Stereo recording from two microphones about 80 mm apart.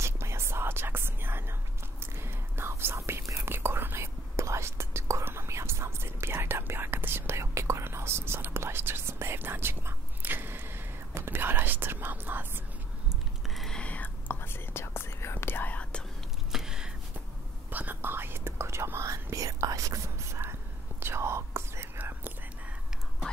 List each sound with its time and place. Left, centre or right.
0.0 s whispering: right
13.5 s whispering: centre
13.7 s whispering: centre
16.5 s a sound: centre
17.6 s whispering: right